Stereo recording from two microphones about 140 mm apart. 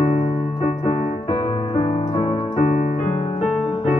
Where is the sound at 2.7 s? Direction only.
55° left (ahead or behind).